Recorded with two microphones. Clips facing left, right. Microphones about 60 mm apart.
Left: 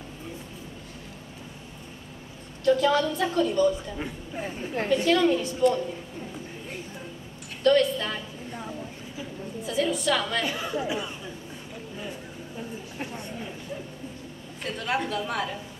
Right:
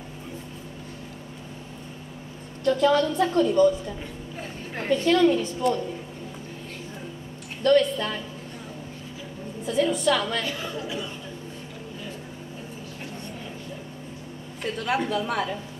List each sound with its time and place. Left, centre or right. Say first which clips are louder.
2.6 s a woman's voice: right 1 dB; centre
4.9 s a woman's voice: right 2 dB; centre
7.6 s a woman's voice: right 1 dB; centre
9.7 s a woman's voice: right 3 dB; centre
10.4 s speech: left 2 dB; centre
14.6 s a woman's voice: right 2 dB; centre